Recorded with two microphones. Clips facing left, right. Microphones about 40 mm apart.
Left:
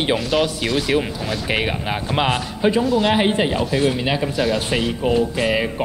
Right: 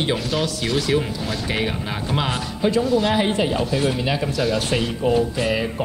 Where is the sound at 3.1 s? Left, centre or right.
Left.